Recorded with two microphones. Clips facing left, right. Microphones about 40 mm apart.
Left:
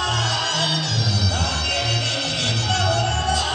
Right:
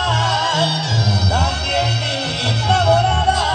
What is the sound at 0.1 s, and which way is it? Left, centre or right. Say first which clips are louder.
Music: right 5 dB; centre.